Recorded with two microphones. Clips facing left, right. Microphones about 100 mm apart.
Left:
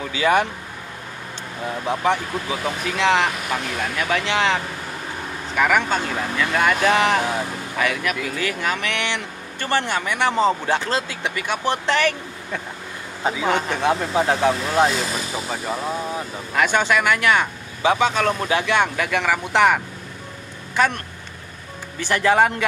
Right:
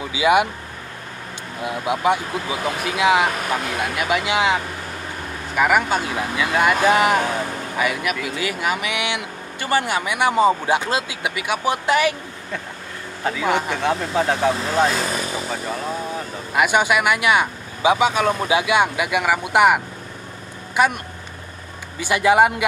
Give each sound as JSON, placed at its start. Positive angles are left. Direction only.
{"t": 0.0, "sound": "speech", "side_deg": -10}
{"t": 1.6, "sound": "speech", "side_deg": -10}
{"t": 13.2, "sound": "speech", "side_deg": 20}
{"t": 13.5, "sound": "speech", "side_deg": -15}
{"t": 13.7, "sound": "speech", "side_deg": 15}
{"t": 16.5, "sound": "speech", "side_deg": -10}
{"t": 22.0, "sound": "speech", "side_deg": -10}